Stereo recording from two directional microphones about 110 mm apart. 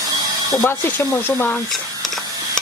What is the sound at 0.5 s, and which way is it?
Speech, 30° left (ahead or behind).